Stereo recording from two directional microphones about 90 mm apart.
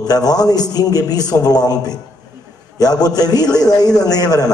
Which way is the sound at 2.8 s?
45° left (ahead or behind).